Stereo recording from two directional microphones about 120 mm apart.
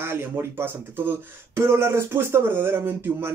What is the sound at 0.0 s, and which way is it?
Speech, 20° right (ahead or behind).